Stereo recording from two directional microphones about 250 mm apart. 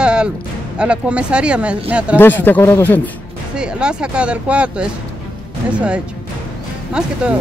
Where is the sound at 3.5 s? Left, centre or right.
Centre.